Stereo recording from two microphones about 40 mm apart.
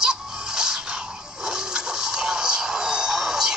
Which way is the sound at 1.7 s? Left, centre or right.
Centre.